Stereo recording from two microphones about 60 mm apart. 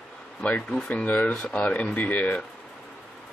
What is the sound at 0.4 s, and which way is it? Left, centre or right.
Speech, left.